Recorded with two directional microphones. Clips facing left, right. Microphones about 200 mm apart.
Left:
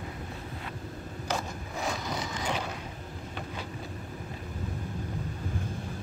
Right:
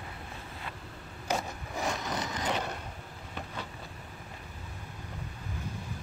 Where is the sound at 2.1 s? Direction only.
10° left (ahead or behind).